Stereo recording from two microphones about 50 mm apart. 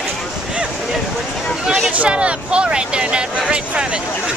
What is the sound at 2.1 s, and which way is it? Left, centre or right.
Speech, right.